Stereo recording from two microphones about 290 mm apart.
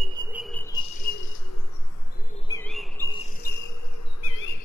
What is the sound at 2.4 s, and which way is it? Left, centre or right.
Bird, centre.